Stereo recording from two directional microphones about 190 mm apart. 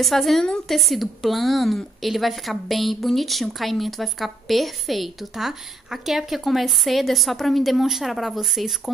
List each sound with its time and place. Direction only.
0.0 s a woman's voice: centre (ahead or behind)